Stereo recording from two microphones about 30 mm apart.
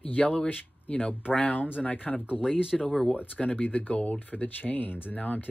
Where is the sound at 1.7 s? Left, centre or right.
Left.